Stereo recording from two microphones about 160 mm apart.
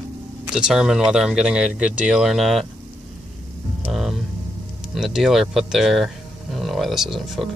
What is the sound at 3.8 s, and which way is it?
Music, centre (ahead or behind).